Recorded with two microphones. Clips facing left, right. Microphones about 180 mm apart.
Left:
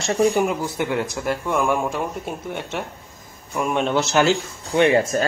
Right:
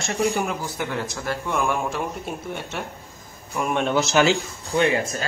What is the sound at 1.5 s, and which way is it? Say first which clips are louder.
Speech: left 3 dB; 5° left (ahead or behind).